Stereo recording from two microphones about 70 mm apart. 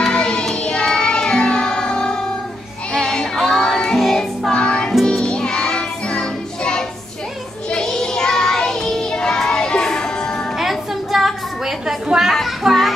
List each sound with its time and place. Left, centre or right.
0.0 s music: centre
7.7 s child singing: centre
10.6 s a sound: centre